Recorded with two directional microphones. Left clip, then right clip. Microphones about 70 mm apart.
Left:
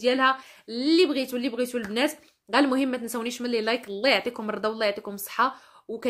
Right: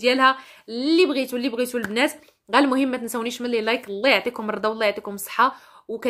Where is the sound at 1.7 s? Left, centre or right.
Right.